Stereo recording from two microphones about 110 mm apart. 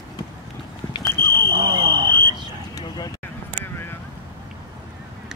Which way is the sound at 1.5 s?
40° right (ahead or behind).